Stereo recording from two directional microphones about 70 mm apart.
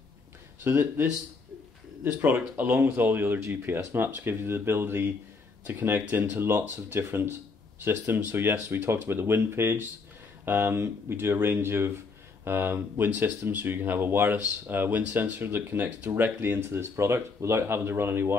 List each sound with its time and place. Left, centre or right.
0.6 s speech: right
2.5 s speech: right
5.8 s speech: right
8.0 s speech: right